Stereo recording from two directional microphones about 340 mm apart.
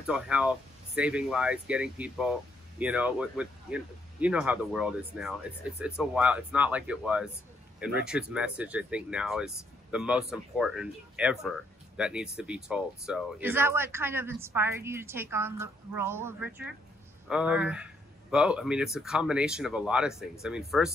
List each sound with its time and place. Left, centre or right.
0.0 s speech: centre